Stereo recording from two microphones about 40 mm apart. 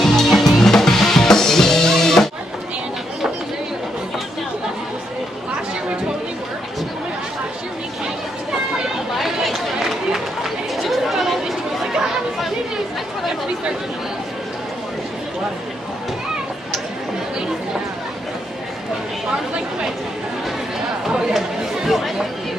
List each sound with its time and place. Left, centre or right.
0.0 s music: centre
9.1 s chatter: centre
21.3 s chatter: centre